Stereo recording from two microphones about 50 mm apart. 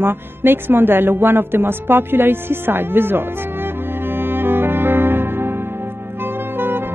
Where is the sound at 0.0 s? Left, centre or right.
Right.